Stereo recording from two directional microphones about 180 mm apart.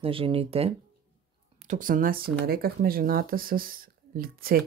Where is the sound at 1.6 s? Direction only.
45° right (ahead or behind).